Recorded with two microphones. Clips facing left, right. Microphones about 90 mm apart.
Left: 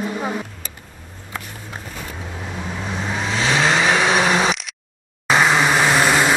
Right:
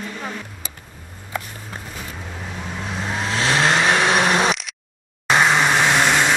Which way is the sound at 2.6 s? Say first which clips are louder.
Left 1 dB; centre (ahead or behind).